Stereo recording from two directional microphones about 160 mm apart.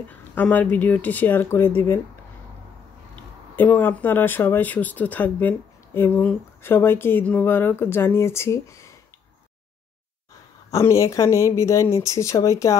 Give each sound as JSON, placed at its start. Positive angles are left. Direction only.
{"t": 0.1, "sound": "speech", "side_deg": 10}
{"t": 3.5, "sound": "speech", "side_deg": 10}
{"t": 10.7, "sound": "speech", "side_deg": 20}